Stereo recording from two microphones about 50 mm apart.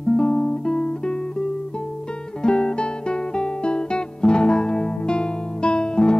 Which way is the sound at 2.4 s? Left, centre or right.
Centre.